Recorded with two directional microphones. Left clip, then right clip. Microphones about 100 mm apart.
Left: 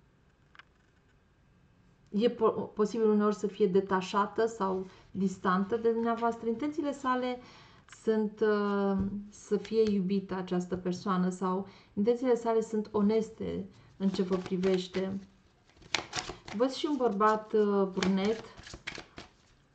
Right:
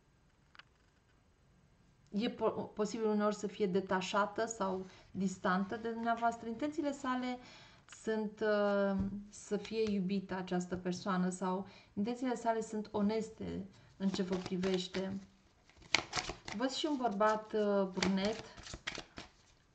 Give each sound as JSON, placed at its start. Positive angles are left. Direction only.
{"t": 2.1, "sound": "speech", "side_deg": -35}
{"t": 14.3, "sound": "speech", "side_deg": -15}
{"t": 15.9, "sound": "a sound", "side_deg": -15}
{"t": 16.6, "sound": "speech", "side_deg": -30}
{"t": 16.9, "sound": "speech", "side_deg": -15}
{"t": 17.5, "sound": "speech", "side_deg": -30}
{"t": 18.1, "sound": "a sound", "side_deg": -25}